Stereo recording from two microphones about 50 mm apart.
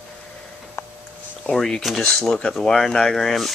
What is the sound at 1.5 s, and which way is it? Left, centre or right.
Speech, centre.